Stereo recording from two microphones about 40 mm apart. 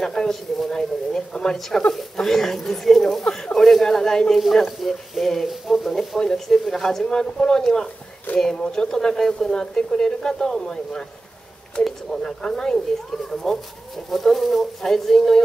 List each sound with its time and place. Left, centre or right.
0.0 s a sound: centre
0.3 s speech: centre
4.4 s speech: centre
7.1 s speech: centre
12.4 s speech: centre